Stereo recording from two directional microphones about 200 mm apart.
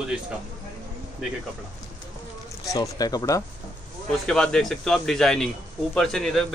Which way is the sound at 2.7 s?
20° left (ahead or behind).